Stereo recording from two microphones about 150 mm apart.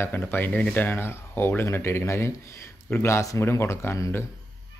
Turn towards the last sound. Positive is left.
turn(degrees=15)  # may be behind; listen again after turning